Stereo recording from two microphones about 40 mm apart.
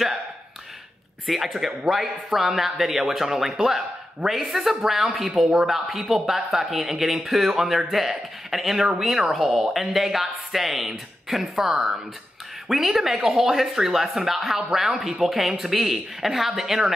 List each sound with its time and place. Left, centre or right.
1.2 s speech: centre